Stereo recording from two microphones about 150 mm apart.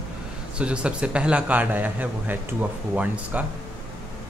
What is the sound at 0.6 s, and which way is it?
A man's voice, 5° right (ahead or behind).